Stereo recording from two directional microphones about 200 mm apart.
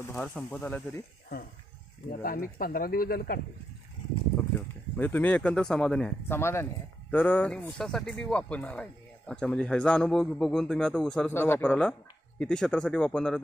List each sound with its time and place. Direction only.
0.0 s speech: 10° left (ahead or behind)
2.2 s speech: 45° left (ahead or behind)
4.6 s a man's voice: 10° left (ahead or behind)